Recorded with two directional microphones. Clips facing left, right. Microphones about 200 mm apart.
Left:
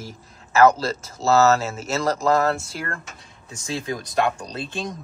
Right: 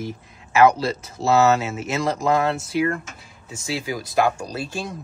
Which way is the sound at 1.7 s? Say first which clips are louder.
Even; centre (ahead or behind).